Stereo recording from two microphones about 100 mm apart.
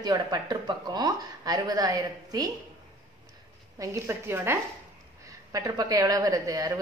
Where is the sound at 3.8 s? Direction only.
30° right (ahead or behind).